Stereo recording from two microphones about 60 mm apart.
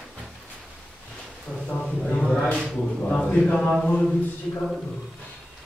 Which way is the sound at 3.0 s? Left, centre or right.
Centre.